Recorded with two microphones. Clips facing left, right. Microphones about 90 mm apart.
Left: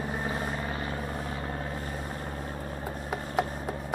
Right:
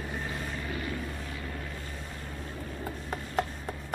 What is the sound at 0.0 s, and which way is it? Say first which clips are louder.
Vehicle: left 4 dB; 35° left (ahead or behind).